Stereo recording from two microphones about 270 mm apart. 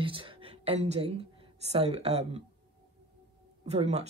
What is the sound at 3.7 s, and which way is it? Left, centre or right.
Speech, right.